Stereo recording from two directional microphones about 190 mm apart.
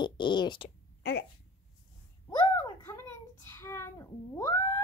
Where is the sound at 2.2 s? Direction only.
20° left (ahead or behind).